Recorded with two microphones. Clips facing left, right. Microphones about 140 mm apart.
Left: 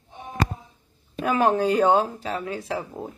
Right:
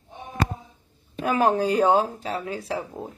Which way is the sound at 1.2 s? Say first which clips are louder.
Left 1 dB; 35° right (ahead or behind).